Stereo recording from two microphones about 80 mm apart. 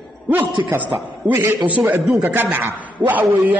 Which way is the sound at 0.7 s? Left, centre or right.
Centre.